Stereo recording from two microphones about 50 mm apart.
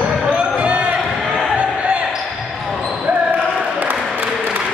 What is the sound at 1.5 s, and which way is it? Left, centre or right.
Basketball bounce, right.